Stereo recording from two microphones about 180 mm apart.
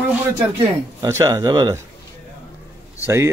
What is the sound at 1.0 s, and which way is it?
Speech, 15° right (ahead or behind).